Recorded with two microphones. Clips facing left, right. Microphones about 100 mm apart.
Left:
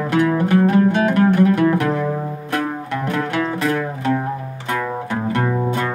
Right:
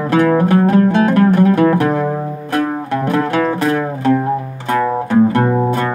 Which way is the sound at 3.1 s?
45° right (ahead or behind).